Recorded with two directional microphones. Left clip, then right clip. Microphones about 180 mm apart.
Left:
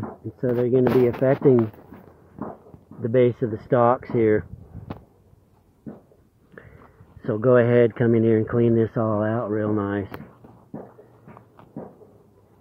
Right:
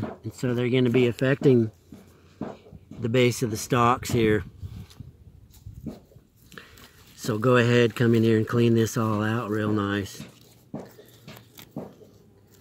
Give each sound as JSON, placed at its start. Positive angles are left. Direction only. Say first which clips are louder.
{"t": 0.4, "sound": "speech", "louder": "left 5 dB", "side_deg": -20}
{"t": 3.0, "sound": "speech", "louder": "left 3 dB", "side_deg": -40}
{"t": 7.2, "sound": "speech", "louder": "left 4 dB", "side_deg": -30}